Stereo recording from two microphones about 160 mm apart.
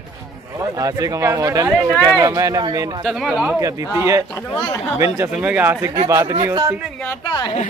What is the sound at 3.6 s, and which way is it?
Speech, 20° right (ahead or behind).